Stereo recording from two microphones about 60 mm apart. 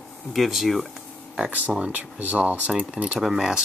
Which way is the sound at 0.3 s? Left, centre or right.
Centre.